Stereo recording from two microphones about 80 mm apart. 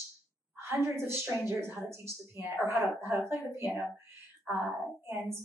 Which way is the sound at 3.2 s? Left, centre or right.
Right.